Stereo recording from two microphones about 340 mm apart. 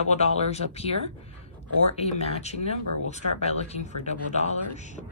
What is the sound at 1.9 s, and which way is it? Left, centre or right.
Speech, centre.